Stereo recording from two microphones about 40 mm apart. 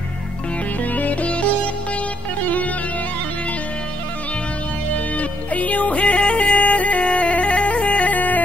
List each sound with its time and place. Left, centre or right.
0.9 s music: left
4.9 s music: left